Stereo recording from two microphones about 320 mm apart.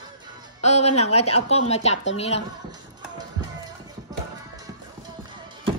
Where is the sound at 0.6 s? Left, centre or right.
Centre.